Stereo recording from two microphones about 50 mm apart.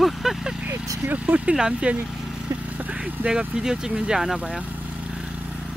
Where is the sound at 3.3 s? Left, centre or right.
Centre.